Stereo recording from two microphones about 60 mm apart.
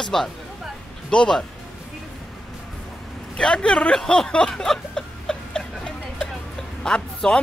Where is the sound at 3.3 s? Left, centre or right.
Centre.